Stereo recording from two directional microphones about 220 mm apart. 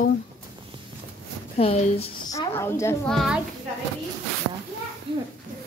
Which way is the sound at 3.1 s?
Centre (ahead or behind).